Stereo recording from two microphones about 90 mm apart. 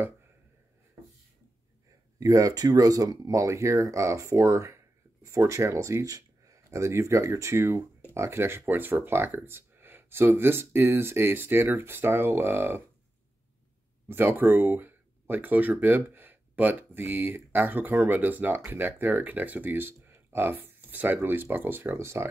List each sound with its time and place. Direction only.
2.1 s speech: 40° right (ahead or behind); by 12.8 s 25° right (ahead or behind)
14.0 s speech: 25° right (ahead or behind)